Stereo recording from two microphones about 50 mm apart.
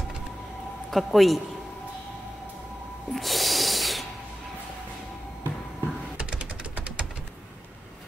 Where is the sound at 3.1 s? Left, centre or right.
Centre.